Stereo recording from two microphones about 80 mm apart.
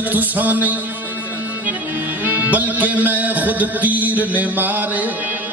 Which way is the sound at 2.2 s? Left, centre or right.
Right.